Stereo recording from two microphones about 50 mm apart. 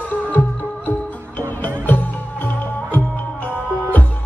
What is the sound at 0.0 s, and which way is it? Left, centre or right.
Music, left.